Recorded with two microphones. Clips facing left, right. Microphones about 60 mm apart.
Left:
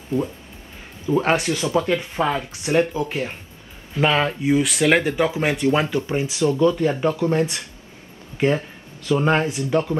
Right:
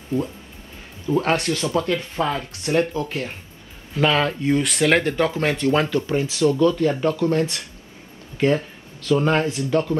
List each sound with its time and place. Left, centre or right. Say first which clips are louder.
1.0 s speech: left 1 dB; centre